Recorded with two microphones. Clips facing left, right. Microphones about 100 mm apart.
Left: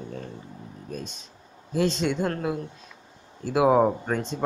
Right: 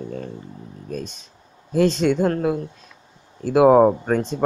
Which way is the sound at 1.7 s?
50° right (ahead or behind).